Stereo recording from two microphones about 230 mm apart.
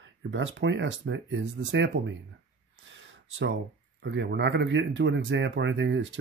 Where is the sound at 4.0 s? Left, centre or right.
Right.